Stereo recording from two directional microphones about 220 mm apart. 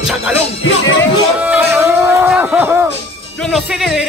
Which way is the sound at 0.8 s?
60° left (ahead or behind).